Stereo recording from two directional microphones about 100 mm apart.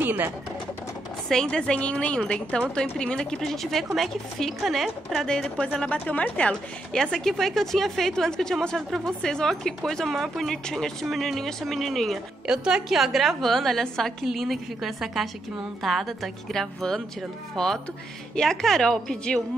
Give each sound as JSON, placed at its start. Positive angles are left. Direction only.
{"t": 0.0, "sound": "speech", "side_deg": -20}
{"t": 1.3, "sound": "a woman's voice", "side_deg": 10}